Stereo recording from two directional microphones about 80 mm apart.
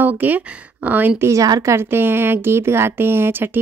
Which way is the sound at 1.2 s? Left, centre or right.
Right.